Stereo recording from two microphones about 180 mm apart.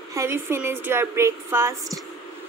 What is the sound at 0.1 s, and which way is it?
A woman's voice, 15° right (ahead or behind).